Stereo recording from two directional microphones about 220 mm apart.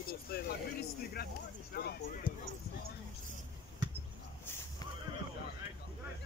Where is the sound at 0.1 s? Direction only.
45° left (ahead or behind).